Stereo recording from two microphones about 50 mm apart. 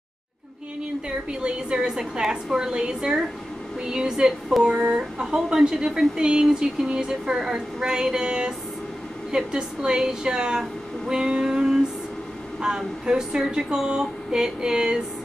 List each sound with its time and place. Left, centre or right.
1.4 s a woman's voice: centre